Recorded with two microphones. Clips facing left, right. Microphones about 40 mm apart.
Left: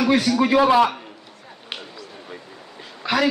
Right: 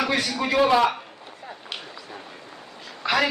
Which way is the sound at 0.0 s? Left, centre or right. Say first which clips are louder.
Left 6 dB; centre.